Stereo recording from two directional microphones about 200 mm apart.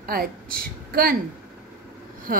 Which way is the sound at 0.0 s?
45° right (ahead or behind).